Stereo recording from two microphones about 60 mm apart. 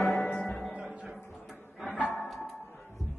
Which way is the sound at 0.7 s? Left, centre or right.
Centre.